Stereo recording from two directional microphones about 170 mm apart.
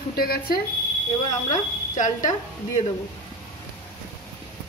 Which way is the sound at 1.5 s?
45° left (ahead or behind).